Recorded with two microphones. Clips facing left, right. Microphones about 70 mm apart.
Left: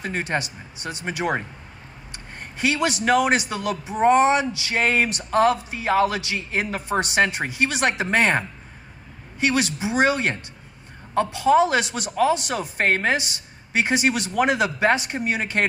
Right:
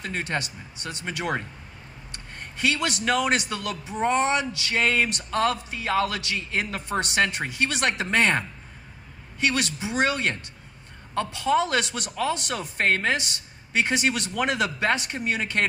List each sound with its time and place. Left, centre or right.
0.0 s a man's voice: centre
2.1 s a man's voice: centre
12.8 s a woman's voice: left
13.1 s a man's voice: centre